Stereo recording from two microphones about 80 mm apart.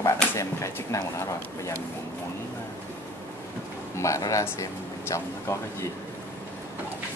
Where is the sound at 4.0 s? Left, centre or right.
Left.